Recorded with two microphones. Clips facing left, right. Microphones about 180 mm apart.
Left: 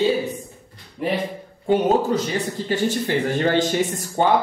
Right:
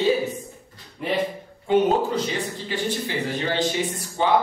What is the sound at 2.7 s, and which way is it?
A man's voice, 45° left (ahead or behind).